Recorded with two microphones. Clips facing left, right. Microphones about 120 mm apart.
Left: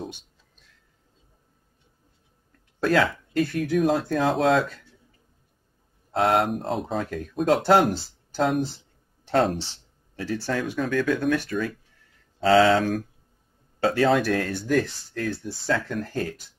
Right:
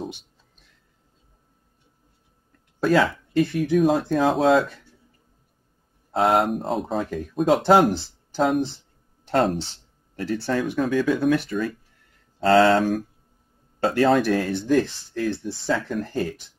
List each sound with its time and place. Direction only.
2.8 s speech: 5° right (ahead or behind)
6.1 s speech: centre (ahead or behind)